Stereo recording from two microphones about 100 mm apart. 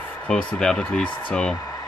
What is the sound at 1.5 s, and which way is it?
Hair dryer, 35° left (ahead or behind).